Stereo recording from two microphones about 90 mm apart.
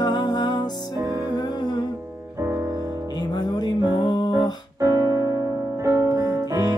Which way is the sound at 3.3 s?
50° left (ahead or behind).